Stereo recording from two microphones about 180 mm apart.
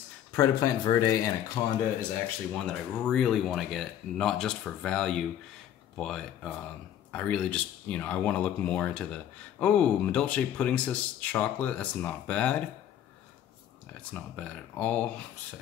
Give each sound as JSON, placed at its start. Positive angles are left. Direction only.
{"t": 0.3, "sound": "speech", "side_deg": 20}
{"t": 2.6, "sound": "speech", "side_deg": 5}
{"t": 14.1, "sound": "speech", "side_deg": 5}